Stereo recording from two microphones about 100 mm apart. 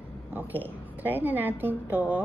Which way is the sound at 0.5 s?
20° left (ahead or behind).